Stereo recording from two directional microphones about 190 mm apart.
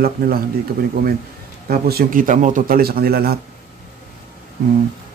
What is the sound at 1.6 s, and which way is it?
A man's voice, 50° right (ahead or behind).